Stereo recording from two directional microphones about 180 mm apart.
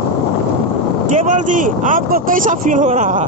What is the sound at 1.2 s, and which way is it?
Speech, 45° right (ahead or behind).